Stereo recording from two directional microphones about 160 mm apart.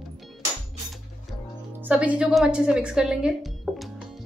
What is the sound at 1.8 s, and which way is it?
A woman's voice, 10° right (ahead or behind).